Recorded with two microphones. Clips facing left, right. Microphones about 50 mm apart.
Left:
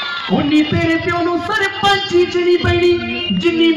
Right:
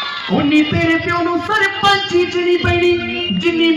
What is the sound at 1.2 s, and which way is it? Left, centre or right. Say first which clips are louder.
Speech: right 1 dB; right.